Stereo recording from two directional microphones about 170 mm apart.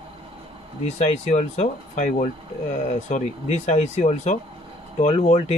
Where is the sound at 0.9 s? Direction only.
40° left (ahead or behind).